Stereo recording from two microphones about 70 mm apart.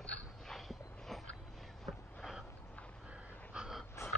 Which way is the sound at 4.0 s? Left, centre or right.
Left.